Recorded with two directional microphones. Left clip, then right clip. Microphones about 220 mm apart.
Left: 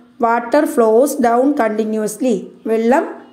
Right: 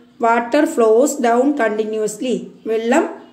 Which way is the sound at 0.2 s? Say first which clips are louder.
Left 1 dB; 25° left (ahead or behind).